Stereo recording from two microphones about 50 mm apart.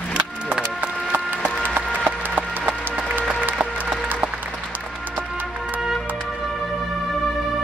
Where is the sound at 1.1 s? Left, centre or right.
Right.